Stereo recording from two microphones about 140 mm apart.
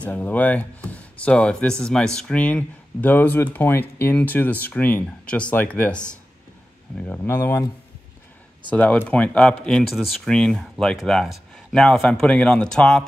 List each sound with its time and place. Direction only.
0.0 s speech: 10° left (ahead or behind)